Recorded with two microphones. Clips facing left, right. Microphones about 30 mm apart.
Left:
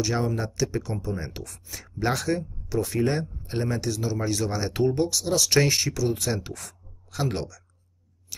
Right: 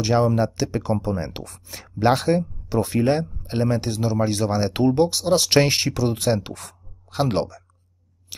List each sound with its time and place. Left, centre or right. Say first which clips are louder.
0.0 s speech: right 7 dB; right
8.3 s scissors: right 2 dB; right